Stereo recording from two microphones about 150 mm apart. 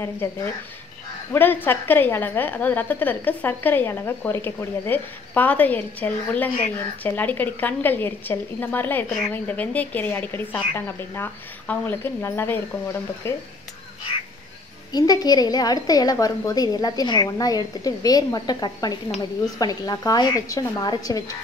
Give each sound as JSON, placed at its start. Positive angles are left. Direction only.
{"t": 0.2, "sound": "a woman's voice", "side_deg": 15}
{"t": 14.9, "sound": "a woman's voice", "side_deg": 25}